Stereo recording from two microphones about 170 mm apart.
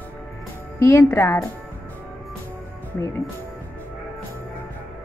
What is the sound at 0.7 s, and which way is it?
Speech, 15° left (ahead or behind).